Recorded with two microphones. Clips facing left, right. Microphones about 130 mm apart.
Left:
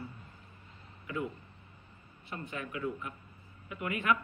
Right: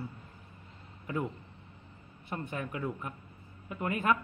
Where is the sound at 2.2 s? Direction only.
45° right (ahead or behind).